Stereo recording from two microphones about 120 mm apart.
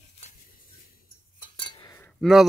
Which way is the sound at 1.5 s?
40° left (ahead or behind).